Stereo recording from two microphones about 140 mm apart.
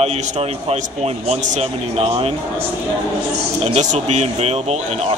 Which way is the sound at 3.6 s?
55° right (ahead or behind).